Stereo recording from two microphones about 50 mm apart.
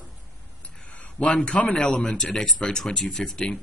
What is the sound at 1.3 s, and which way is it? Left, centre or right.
A man's voice, left.